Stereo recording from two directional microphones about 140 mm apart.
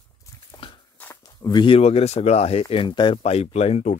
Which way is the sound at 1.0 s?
20° left (ahead or behind).